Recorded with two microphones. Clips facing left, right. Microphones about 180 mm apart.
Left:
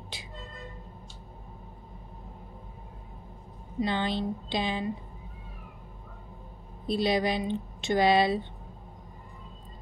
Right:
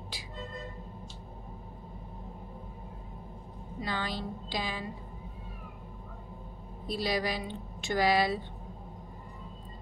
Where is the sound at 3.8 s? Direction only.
25° left (ahead or behind).